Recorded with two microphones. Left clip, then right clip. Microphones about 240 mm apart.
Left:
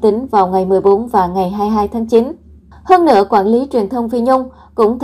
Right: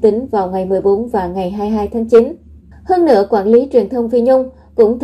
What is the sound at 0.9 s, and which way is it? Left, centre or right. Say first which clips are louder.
A woman's voice: left 3 dB; left.